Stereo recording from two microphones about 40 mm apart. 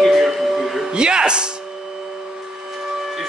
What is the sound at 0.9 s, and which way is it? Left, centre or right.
Speech, right.